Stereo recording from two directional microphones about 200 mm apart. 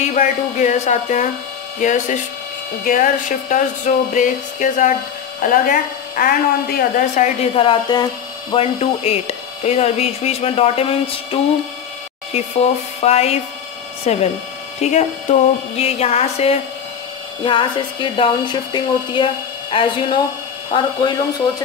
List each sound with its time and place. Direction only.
0.0 s a woman's voice: 35° left (ahead or behind)
12.3 s a woman's voice: 30° left (ahead or behind)